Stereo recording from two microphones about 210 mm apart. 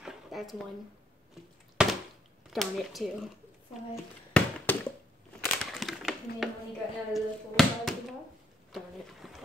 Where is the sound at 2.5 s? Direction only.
Centre (ahead or behind).